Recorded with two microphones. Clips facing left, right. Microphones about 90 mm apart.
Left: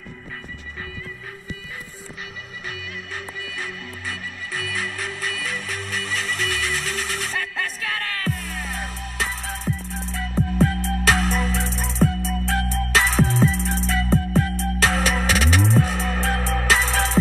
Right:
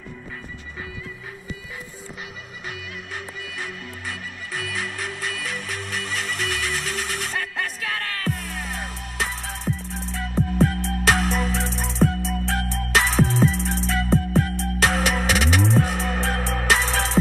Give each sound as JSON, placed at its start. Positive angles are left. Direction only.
{"t": 3.3, "sound": "music", "side_deg": -20}